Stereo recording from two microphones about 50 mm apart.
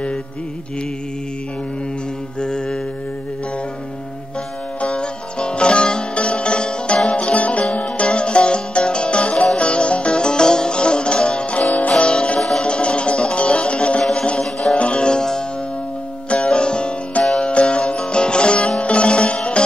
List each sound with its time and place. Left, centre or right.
2.4 s mantra: centre
4.8 s music: centre
12.4 s music: centre
12.6 s music: left
14.8 s music: left